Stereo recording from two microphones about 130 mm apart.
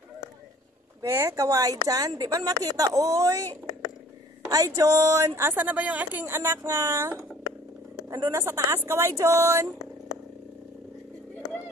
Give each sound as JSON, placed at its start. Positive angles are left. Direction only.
{"t": 1.0, "sound": "speech", "side_deg": -20}